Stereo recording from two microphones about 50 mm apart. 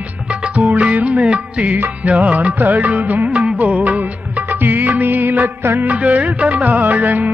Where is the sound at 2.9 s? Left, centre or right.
Right.